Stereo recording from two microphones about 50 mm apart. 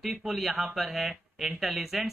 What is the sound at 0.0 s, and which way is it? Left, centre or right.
Speech, centre.